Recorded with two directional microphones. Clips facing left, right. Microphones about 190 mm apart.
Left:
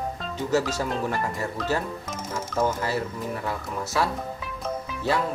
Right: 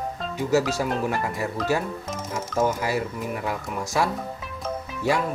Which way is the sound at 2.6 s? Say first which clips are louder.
Right 2 dB; 10° right (ahead or behind).